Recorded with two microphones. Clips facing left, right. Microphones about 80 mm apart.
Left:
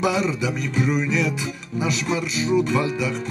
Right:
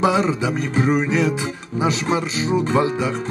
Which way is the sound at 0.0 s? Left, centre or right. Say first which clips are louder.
Right 4 dB; right.